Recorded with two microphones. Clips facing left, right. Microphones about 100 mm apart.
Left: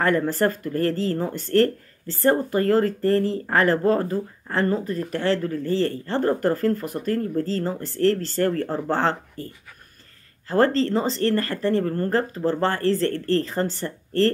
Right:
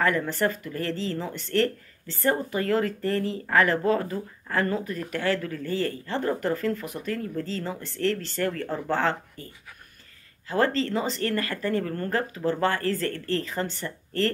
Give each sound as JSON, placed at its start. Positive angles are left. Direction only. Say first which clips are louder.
{"t": 0.0, "sound": "speech", "louder": "left 4 dB", "side_deg": 40}
{"t": 10.5, "sound": "speech", "louder": "left 5 dB", "side_deg": 35}